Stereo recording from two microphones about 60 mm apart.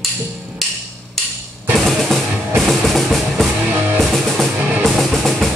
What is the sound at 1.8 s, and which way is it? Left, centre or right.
Music, centre.